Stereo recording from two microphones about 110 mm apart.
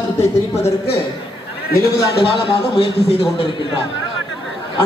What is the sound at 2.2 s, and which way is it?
A man's voice, 50° left (ahead or behind).